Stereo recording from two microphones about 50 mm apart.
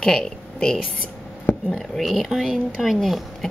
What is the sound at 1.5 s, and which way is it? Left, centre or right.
Speech, centre.